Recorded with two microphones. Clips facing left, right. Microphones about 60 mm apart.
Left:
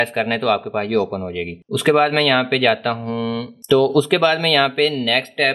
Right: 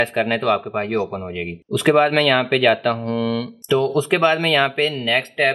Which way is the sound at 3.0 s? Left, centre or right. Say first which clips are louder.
Right 1 dB; centre.